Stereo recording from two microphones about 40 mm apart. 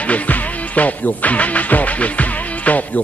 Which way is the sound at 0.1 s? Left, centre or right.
Left.